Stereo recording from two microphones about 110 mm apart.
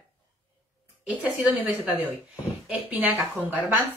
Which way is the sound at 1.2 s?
15° right (ahead or behind).